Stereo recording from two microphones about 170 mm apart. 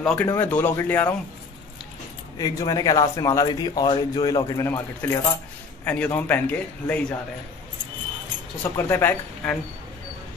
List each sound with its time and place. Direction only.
0.0 s a man's voice: 5° left (ahead or behind)
2.3 s a man's voice: 20° left (ahead or behind)
8.7 s a man's voice: 10° left (ahead or behind)